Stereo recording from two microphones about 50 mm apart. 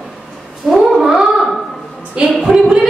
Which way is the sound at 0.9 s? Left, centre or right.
Centre.